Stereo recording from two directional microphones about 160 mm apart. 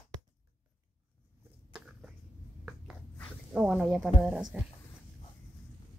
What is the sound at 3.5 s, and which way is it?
A woman's voice, 5° right (ahead or behind).